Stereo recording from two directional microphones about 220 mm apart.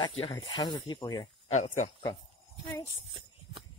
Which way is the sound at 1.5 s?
30° left (ahead or behind).